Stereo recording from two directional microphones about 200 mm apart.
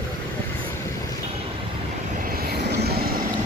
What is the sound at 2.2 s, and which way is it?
Vehicle, 50° right (ahead or behind).